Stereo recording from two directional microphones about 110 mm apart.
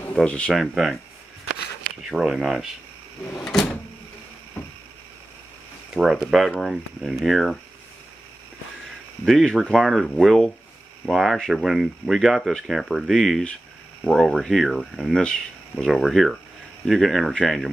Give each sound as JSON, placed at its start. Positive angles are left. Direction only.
{"t": 0.1, "sound": "speech", "side_deg": 10}
{"t": 2.0, "sound": "speech", "side_deg": -5}
{"t": 3.3, "sound": "door", "side_deg": 5}
{"t": 4.6, "sound": "a sound", "side_deg": 20}
{"t": 5.9, "sound": "speech", "side_deg": -5}
{"t": 9.2, "sound": "speech", "side_deg": 5}